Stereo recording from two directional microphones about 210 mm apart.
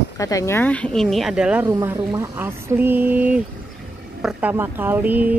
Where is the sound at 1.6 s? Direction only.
15° right (ahead or behind).